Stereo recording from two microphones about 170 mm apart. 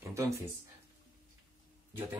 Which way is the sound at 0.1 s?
15° right (ahead or behind).